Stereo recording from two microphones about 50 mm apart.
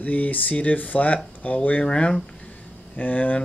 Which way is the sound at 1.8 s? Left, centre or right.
Centre.